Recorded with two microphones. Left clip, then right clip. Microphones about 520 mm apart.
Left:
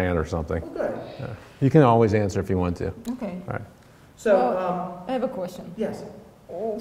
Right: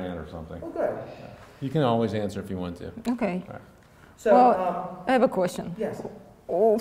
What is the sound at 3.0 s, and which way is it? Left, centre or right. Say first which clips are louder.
Speech: right 5 dB; right.